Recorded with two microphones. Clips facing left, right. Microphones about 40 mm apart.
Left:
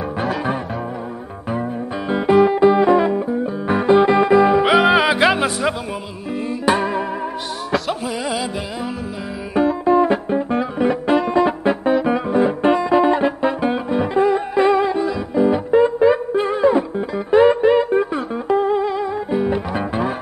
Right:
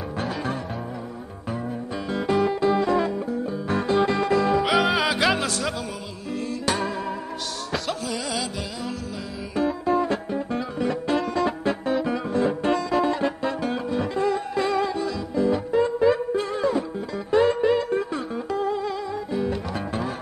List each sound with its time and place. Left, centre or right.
1.5 s music: left